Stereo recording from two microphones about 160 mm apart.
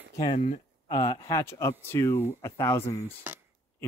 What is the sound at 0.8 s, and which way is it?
Speech, 25° left (ahead or behind).